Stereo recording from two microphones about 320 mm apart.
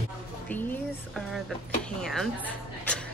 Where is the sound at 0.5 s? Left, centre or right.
Centre.